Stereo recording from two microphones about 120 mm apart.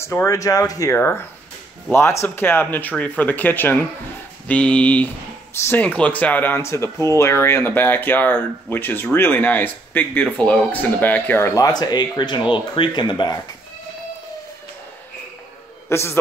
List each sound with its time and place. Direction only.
0.0 s speech: 20° left (ahead or behind)
0.9 s speech: 20° left (ahead or behind); by 13.4 s 40° left (ahead or behind)
15.9 s speech: 20° left (ahead or behind)